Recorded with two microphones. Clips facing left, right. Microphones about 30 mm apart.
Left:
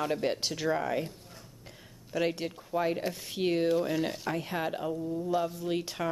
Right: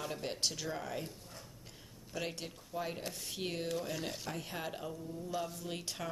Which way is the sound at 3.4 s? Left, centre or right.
Left.